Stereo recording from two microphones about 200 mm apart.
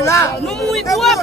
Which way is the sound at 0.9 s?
Centre (ahead or behind).